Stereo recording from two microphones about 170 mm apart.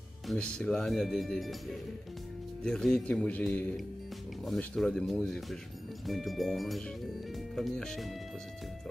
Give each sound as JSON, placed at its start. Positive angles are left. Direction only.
{"t": 0.3, "sound": "speech", "side_deg": 5}